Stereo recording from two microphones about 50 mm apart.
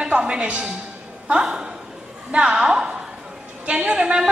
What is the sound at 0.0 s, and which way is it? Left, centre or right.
Speech, centre.